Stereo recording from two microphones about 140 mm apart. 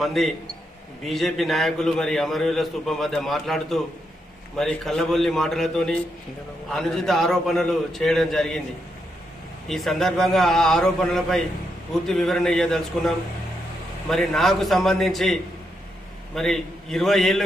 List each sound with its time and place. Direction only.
0.0 s a man's voice: centre (ahead or behind)
9.7 s a man's voice: centre (ahead or behind)
16.3 s a man's voice: 5° left (ahead or behind)